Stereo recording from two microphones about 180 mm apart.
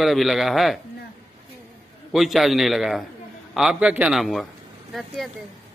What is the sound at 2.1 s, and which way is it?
Speech, centre (ahead or behind).